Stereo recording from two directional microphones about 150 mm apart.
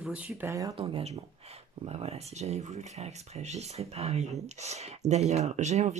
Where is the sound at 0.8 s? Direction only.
35° right (ahead or behind).